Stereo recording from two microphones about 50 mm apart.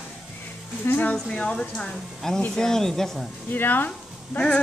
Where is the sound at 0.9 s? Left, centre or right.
Left.